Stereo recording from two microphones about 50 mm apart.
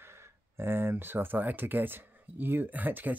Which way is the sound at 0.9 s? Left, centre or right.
Right.